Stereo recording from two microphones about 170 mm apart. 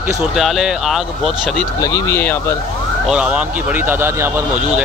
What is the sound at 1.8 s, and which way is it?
Speech, 20° left (ahead or behind).